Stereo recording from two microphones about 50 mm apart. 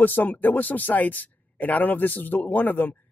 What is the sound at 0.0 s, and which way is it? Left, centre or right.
Speech, left.